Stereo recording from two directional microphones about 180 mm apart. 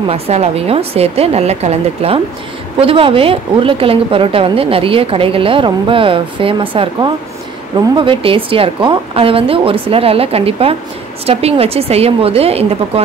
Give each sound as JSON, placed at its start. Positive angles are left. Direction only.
{"t": 0.1, "sound": "a woman's voice", "side_deg": -35}